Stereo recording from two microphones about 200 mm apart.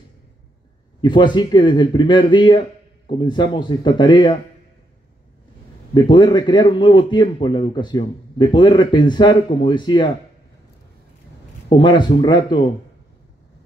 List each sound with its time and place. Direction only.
1.0 s a man's voice: 25° left (ahead or behind)
5.9 s a man's voice: 20° left (ahead or behind)
11.7 s a man's voice: 20° left (ahead or behind)